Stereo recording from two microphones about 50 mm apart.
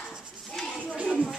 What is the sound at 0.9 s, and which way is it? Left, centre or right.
Music, right.